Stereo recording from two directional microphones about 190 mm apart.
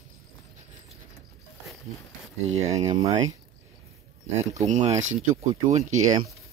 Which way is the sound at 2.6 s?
35° right (ahead or behind).